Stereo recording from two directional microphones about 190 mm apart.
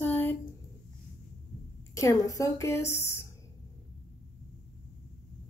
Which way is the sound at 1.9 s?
15° left (ahead or behind).